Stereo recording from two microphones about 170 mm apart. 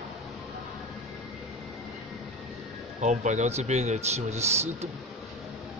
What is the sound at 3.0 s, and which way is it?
Speech, 45° right (ahead or behind).